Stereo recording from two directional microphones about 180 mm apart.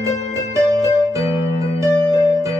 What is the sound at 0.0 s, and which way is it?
Music, 20° right (ahead or behind).